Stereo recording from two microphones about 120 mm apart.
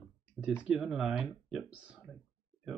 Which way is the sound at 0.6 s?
5° right (ahead or behind).